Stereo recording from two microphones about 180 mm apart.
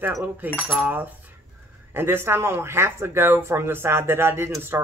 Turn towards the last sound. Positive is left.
turn(degrees=-15)  # may be behind; listen again after turning